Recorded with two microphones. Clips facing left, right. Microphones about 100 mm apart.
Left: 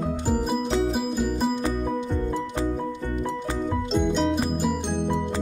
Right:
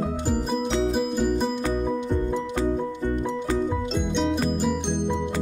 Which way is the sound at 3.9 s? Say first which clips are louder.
Left 4 dB; 5° left (ahead or behind).